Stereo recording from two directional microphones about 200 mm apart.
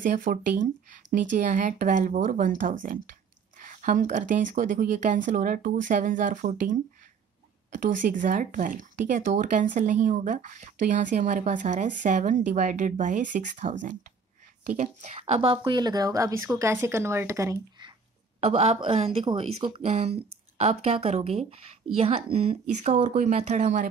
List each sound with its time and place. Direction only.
0.0 s a woman's voice: 40° right (ahead or behind); by 17.9 s 20° right (ahead or behind)
18.4 s speech: 30° right (ahead or behind)